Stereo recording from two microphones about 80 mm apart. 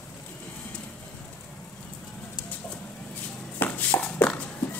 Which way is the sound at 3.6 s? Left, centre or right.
Left.